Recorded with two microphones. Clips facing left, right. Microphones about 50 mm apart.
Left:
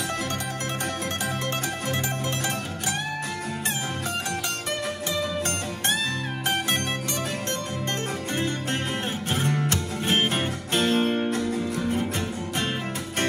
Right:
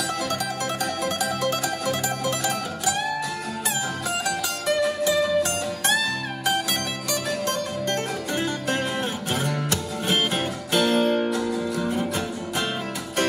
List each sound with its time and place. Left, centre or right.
9.3 s music: left